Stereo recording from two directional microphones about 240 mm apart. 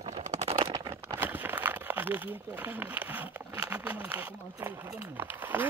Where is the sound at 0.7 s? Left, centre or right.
Centre.